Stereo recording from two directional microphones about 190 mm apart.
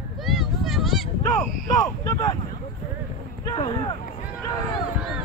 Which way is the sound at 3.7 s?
25° left (ahead or behind).